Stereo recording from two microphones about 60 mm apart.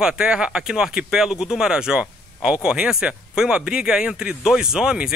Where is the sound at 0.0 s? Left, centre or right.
Centre.